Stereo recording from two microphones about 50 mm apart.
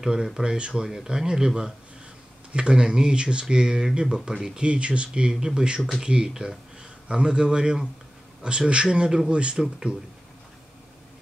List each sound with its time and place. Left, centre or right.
0.0 s speech: centre
4.2 s speech: centre
4.6 s speech: right
5.8 s speech: centre
6.0 s speech: centre